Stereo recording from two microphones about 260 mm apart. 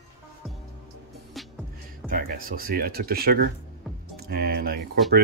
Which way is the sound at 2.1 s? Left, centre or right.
Right.